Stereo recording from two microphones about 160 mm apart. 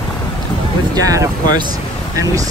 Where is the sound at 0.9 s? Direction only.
20° right (ahead or behind).